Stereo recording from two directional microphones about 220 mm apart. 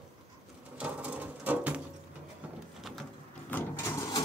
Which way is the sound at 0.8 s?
5° right (ahead or behind).